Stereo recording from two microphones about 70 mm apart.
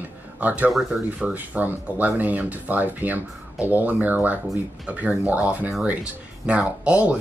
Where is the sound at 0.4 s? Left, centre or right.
Right.